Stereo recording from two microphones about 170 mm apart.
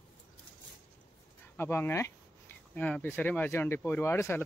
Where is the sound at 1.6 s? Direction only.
15° left (ahead or behind).